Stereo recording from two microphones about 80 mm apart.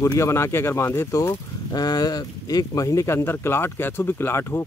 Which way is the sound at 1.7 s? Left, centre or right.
Left.